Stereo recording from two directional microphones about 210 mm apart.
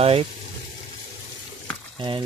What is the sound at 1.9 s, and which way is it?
Frying, 25° right (ahead or behind).